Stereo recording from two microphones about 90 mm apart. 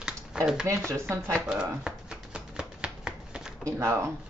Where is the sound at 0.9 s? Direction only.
30° right (ahead or behind).